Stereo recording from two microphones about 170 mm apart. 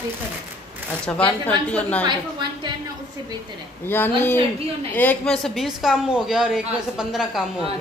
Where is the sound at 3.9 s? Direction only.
10° left (ahead or behind); by 7.7 s 5° right (ahead or behind).